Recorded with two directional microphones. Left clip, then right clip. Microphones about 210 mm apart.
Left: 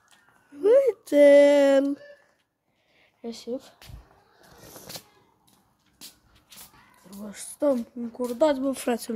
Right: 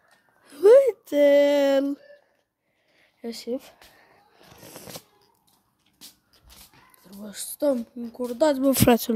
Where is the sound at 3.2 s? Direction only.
30° right (ahead or behind).